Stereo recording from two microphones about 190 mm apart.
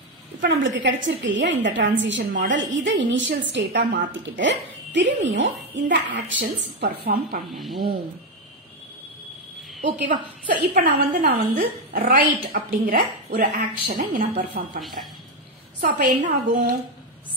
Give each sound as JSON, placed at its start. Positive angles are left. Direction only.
{"t": 0.4, "sound": "a woman's voice", "side_deg": -70}
{"t": 6.4, "sound": "a woman's voice", "side_deg": -55}
{"t": 7.5, "sound": "speech", "side_deg": 0}
{"t": 9.8, "sound": "a woman's voice", "side_deg": -45}
{"t": 15.8, "sound": "a woman's voice", "side_deg": -45}